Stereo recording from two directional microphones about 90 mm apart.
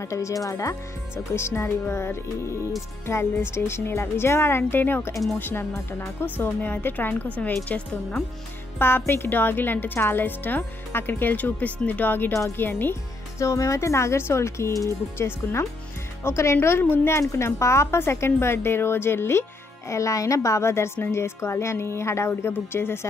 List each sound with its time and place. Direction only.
0.0 s speech: 35° left (ahead or behind)
13.4 s speech: 35° left (ahead or behind)